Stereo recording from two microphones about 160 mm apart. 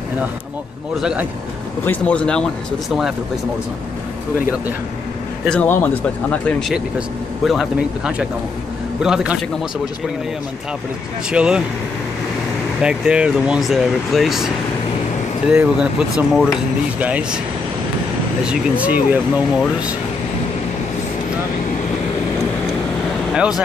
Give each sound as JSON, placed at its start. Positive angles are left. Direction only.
{"t": 1.9, "sound": "speech", "side_deg": 5}
{"t": 5.5, "sound": "speech", "side_deg": 10}
{"t": 7.4, "sound": "speech", "side_deg": -5}
{"t": 11.2, "sound": "speech", "side_deg": -5}
{"t": 12.8, "sound": "speech", "side_deg": -5}
{"t": 18.4, "sound": "speech", "side_deg": -5}